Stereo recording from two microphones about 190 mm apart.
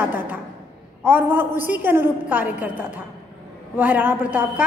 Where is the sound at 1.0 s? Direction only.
10° right (ahead or behind).